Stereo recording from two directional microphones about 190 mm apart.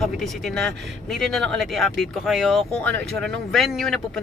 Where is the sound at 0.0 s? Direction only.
Centre (ahead or behind).